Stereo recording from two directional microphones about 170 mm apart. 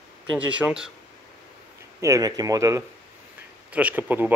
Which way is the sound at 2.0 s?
20° right (ahead or behind).